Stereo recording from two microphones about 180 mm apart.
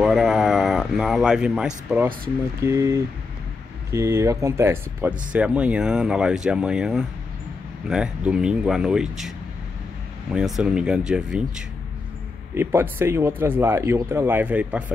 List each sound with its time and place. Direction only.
0.0 s speech: centre (ahead or behind)
10.3 s speech: 5° right (ahead or behind)